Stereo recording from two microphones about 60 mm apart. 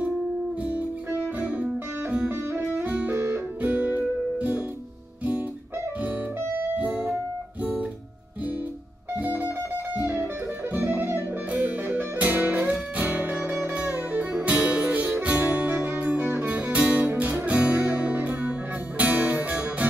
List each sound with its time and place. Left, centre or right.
2.2 s music: right
3.6 s music: right
9.1 s music: right
14.3 s music: right
15.3 s music: right
17.5 s music: right